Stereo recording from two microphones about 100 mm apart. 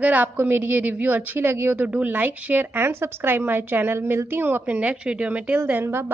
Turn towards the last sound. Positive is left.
turn(degrees=-20)  # may be behind; listen again after turning